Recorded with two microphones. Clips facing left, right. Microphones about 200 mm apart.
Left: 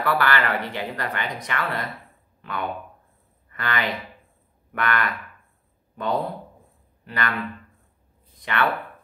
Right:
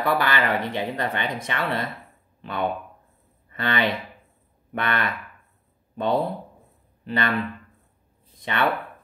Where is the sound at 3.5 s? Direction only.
25° right (ahead or behind).